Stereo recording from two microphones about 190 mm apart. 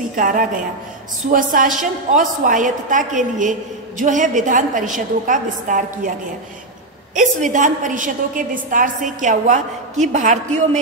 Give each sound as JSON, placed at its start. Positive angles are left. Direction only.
{"t": 0.1, "sound": "a woman's voice", "side_deg": -45}
{"t": 7.2, "sound": "a woman's voice", "side_deg": -40}